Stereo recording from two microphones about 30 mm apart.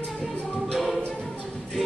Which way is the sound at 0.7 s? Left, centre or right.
Centre.